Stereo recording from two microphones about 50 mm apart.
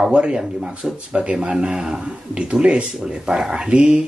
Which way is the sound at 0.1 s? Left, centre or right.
Centre.